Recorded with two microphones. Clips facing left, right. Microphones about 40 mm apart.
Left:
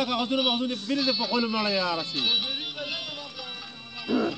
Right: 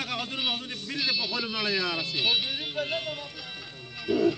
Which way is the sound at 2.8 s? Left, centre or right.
Right.